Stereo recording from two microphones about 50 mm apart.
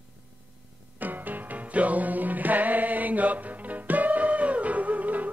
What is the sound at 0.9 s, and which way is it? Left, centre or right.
Music, right.